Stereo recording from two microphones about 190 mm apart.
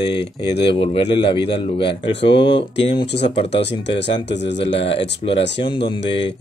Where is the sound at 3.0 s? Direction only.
65° left (ahead or behind).